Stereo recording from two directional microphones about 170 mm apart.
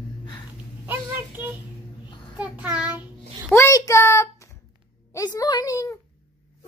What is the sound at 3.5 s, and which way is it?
Child singing, 20° left (ahead or behind).